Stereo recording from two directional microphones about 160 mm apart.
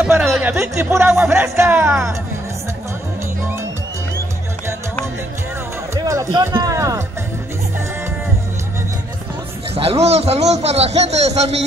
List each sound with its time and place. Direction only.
0.0 s music: centre (ahead or behind)
0.5 s speech: 15° right (ahead or behind)
5.9 s music: 25° right (ahead or behind)
6.5 s speech: 20° right (ahead or behind)
9.8 s a man's voice: 40° right (ahead or behind)